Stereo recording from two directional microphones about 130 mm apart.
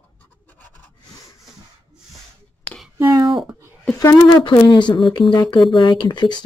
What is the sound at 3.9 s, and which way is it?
Speech, 30° left (ahead or behind).